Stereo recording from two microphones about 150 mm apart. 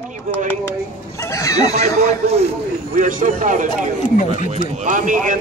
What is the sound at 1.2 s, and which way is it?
Speech, 20° left (ahead or behind).